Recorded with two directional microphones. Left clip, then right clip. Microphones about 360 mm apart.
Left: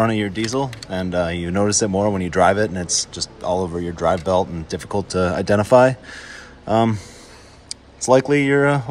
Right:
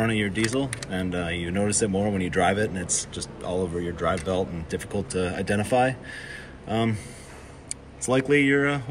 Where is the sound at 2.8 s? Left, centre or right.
Centre.